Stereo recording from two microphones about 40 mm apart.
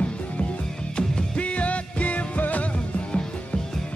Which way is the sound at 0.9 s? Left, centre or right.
Left.